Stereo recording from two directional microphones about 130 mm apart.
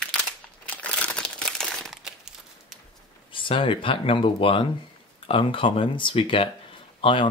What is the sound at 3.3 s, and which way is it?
Speech, 40° left (ahead or behind).